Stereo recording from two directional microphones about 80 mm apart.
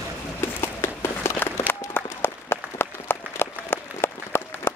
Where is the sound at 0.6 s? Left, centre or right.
Left.